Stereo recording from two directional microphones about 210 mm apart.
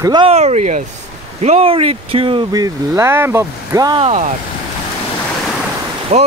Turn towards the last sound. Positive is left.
turn(degrees=-30)  # may be behind; listen again after turning